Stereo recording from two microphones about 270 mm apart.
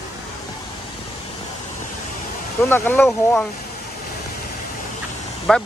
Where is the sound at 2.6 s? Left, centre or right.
Centre.